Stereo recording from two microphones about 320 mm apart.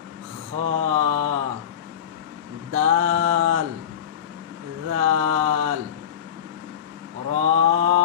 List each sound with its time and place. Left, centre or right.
0.7 s mantra: right
2.7 s a sound: right
4.8 s mantra: right
7.2 s mantra: right